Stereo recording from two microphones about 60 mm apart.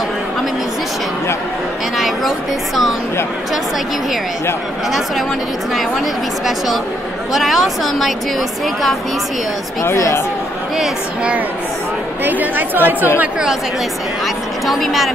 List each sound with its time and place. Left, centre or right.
2.0 s a woman's voice: centre
7.3 s a woman's voice: centre
9.8 s speech: left
12.3 s speech: right
14.2 s speech: centre